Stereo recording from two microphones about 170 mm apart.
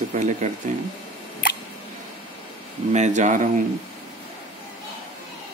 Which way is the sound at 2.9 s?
45° right (ahead or behind).